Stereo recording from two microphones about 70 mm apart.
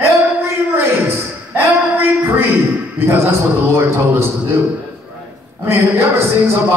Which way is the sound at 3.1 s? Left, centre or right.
Right.